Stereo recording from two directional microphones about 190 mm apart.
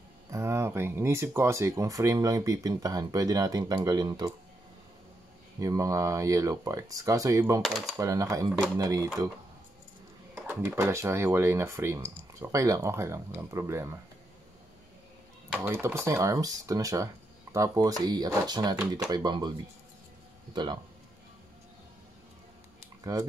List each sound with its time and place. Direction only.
0.3 s speech: 15° right (ahead or behind)
5.6 s speech: 20° right (ahead or behind)
7.6 s speech: centre (ahead or behind)
8.0 s speech: 15° right (ahead or behind)
10.3 s speech: 10° right (ahead or behind)
15.6 s speech: 15° right (ahead or behind)
23.1 s speech: 20° right (ahead or behind)